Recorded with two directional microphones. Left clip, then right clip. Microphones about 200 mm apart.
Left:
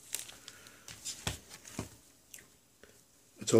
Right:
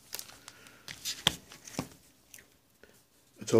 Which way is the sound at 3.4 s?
Centre (ahead or behind).